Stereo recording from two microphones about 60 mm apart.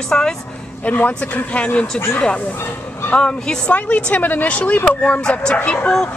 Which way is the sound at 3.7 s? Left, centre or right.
Left.